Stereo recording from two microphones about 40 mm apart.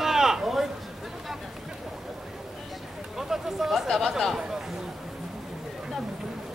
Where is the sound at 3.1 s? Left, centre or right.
Centre.